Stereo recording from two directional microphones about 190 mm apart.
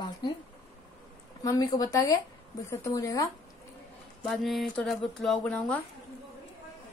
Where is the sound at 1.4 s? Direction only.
20° left (ahead or behind).